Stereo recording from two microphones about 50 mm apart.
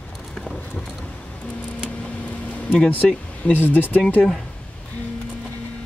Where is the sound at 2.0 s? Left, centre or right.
Left.